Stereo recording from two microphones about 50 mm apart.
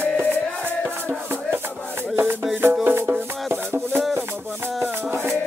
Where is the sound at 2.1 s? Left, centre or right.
Right.